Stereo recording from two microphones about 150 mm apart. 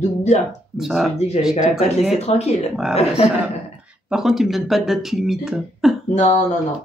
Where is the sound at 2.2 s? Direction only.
45° left (ahead or behind).